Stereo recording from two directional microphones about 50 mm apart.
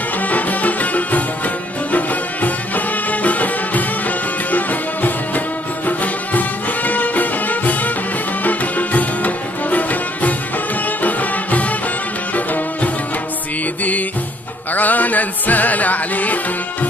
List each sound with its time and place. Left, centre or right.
0.3 s music: left
14.7 s music: left